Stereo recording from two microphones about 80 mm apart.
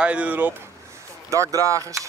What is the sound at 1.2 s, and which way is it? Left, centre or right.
Speech, right.